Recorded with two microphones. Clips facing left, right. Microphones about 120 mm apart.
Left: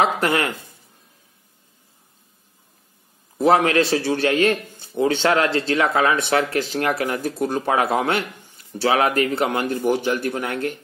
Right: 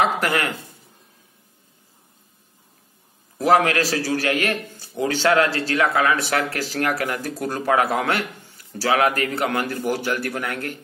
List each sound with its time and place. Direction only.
0.0 s speech: 25° left (ahead or behind)
3.3 s speech: 25° left (ahead or behind)